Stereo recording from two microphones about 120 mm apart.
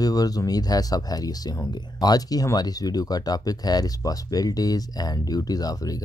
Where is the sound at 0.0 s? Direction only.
30° left (ahead or behind).